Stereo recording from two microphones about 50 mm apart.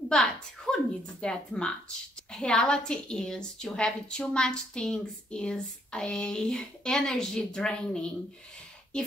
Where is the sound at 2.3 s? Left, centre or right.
Centre.